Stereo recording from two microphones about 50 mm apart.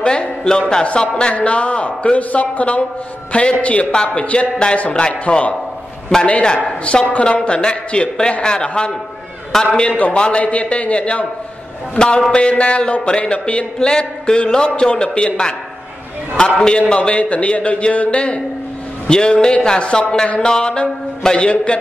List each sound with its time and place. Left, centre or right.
0.0 s speech: centre
9.5 s a man's voice: centre
9.8 s speech: left
12.3 s speech: left
16.6 s a man's voice: centre